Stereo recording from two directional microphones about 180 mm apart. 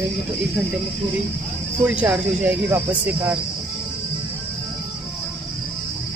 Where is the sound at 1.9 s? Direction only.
10° right (ahead or behind).